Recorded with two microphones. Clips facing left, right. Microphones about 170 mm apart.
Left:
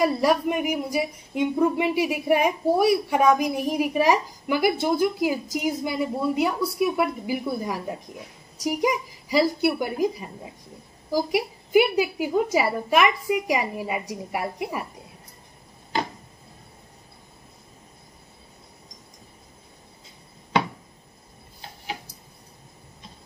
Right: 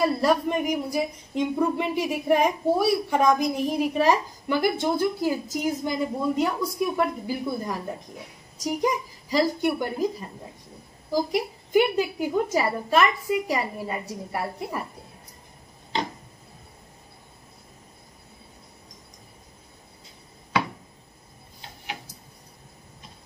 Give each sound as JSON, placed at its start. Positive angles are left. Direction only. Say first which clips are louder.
{"t": 0.0, "sound": "speech", "louder": "left 1 dB", "side_deg": 10}